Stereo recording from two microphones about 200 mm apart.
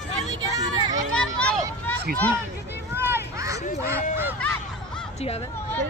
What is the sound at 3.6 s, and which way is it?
Speech, 40° left (ahead or behind).